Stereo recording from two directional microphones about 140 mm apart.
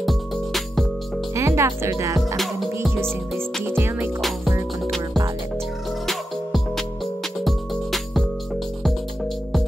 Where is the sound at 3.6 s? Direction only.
15° right (ahead or behind).